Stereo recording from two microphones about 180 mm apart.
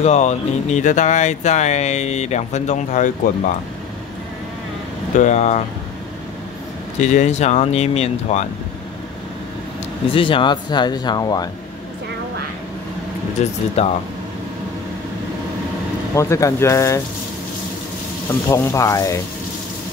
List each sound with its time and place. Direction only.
0.0 s speech: 40° left (ahead or behind)
5.2 s speech: 40° left (ahead or behind)
7.0 s speech: 40° left (ahead or behind)
10.1 s speech: 30° left (ahead or behind)
13.4 s speech: 40° left (ahead or behind)
16.2 s speech: 15° left (ahead or behind)
18.5 s speech: 15° left (ahead or behind)